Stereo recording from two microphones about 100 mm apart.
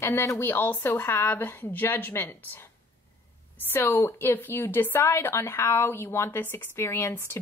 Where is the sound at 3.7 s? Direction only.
25° left (ahead or behind).